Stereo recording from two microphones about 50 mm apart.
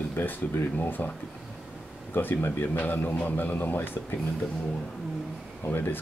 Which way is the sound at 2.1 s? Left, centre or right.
Left.